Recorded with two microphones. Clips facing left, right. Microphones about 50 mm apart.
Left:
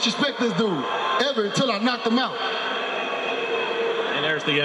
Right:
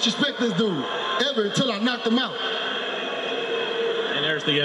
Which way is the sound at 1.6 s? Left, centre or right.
Left.